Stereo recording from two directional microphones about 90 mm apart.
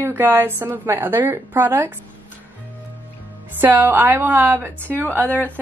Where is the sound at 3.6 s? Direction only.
25° right (ahead or behind).